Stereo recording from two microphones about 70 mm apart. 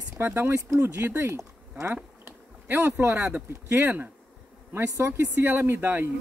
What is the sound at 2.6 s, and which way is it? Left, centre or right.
Speech, right.